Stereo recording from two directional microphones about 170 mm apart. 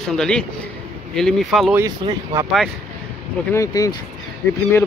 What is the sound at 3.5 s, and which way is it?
Speech, 20° left (ahead or behind).